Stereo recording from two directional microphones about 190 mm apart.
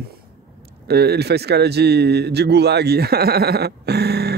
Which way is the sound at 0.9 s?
55° right (ahead or behind).